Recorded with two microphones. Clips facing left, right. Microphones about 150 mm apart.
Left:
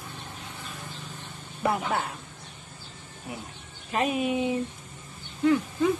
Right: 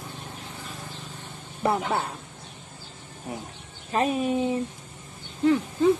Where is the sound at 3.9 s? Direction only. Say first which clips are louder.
Right 2 dB; 35° right (ahead or behind).